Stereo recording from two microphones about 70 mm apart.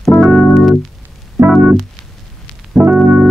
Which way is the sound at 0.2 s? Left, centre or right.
Centre.